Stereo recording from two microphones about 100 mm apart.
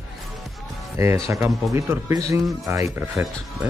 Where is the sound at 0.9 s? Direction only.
30° right (ahead or behind).